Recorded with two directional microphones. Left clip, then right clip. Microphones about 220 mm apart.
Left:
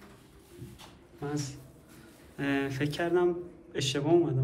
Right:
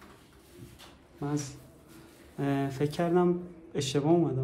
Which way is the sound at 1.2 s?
25° right (ahead or behind).